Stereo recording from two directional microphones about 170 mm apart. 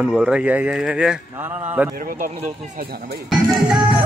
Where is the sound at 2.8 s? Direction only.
65° right (ahead or behind).